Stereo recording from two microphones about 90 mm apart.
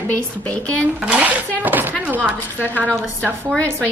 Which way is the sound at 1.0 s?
15° right (ahead or behind).